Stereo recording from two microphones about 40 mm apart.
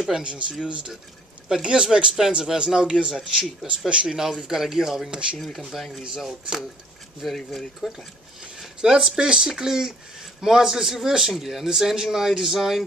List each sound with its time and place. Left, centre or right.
0.2 s a man's voice: right
5.1 s a man's voice: right
5.6 s speech: centre
7.2 s speech: centre
8.4 s speech: centre